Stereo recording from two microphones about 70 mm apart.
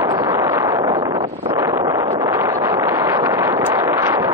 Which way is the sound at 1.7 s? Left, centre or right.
Right.